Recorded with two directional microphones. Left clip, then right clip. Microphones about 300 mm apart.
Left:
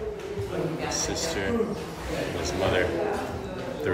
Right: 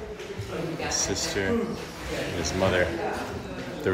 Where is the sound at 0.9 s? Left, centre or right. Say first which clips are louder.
Right 1 dB; centre.